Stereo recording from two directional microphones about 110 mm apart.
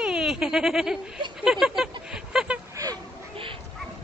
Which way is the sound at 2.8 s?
30° right (ahead or behind).